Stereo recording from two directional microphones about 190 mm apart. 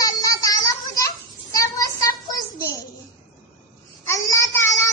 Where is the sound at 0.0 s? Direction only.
15° left (ahead or behind).